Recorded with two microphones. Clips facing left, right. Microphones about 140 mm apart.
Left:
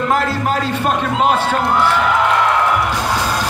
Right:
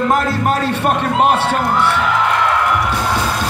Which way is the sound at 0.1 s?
60° right (ahead or behind).